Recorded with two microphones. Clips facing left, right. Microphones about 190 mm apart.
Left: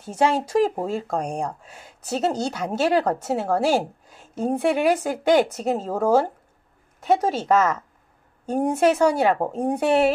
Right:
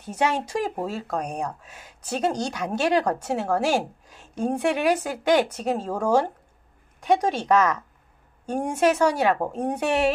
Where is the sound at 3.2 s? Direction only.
10° left (ahead or behind).